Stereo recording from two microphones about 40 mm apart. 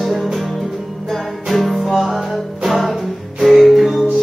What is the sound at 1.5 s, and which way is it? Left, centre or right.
Music, centre.